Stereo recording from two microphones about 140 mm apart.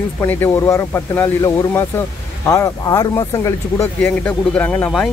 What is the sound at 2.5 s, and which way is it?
Speech, 25° left (ahead or behind).